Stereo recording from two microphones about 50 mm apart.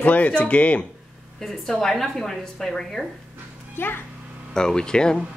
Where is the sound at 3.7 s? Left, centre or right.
Left.